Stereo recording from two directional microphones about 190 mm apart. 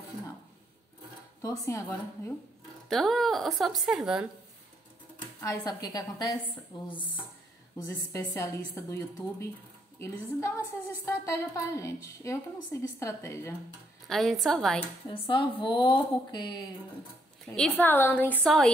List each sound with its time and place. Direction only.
1.4 s a woman's voice: 15° left (ahead or behind)
2.9 s speech: centre (ahead or behind)
5.4 s a woman's voice: 20° left (ahead or behind)
14.0 s speech: centre (ahead or behind)
15.0 s speech: 25° left (ahead or behind)
17.6 s a woman's voice: 5° left (ahead or behind)